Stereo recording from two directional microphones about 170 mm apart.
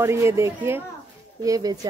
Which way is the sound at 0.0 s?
15° right (ahead or behind).